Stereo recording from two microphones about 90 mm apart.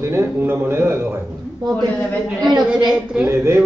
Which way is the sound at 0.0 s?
30° right (ahead or behind).